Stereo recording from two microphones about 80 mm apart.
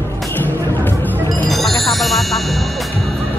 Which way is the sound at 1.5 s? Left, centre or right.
Centre.